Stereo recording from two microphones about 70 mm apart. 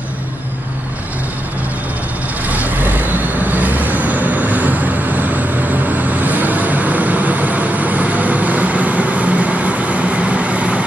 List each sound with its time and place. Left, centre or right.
2.4 s vehicle: right